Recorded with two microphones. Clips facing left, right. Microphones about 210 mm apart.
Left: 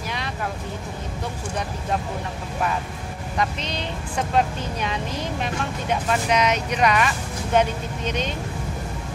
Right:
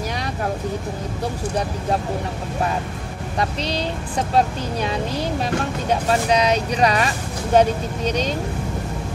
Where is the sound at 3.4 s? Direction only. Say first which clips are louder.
Right 3 dB; 35° right (ahead or behind).